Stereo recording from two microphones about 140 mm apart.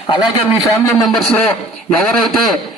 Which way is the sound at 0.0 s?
30° left (ahead or behind).